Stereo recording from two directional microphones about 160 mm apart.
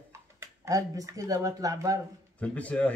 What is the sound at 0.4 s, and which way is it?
Speech, 20° right (ahead or behind).